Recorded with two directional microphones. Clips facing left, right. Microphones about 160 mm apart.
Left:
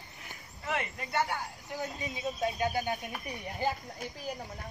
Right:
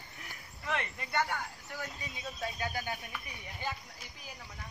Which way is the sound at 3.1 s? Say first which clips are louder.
Left 8 dB; 40° left (ahead or behind).